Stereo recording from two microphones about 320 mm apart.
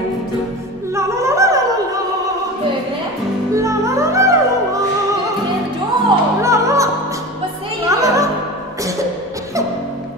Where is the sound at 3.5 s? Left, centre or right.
Centre.